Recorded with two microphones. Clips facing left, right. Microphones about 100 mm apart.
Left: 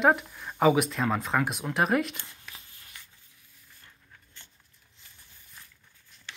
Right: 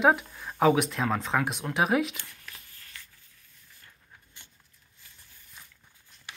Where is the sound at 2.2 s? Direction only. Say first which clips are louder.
Even; 20° left (ahead or behind).